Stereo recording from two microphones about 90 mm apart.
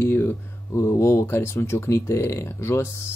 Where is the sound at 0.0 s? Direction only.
20° left (ahead or behind).